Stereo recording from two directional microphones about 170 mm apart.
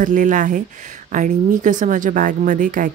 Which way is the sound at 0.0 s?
50° right (ahead or behind).